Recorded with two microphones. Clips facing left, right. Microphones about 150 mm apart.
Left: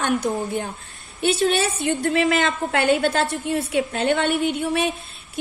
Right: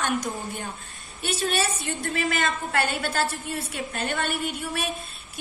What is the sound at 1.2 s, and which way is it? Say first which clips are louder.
A woman's voice: left 7 dB; 65° left (ahead or behind).